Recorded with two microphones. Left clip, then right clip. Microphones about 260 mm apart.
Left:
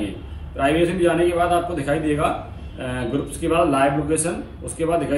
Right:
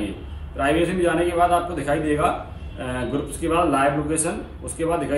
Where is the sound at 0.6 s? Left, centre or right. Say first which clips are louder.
Left 1 dB; centre.